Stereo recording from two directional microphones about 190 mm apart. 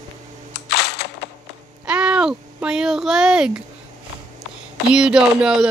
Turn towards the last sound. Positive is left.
turn(degrees=-5)  # may be behind; listen again after turning